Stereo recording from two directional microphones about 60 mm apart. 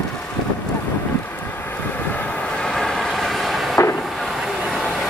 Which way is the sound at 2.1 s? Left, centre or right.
Left.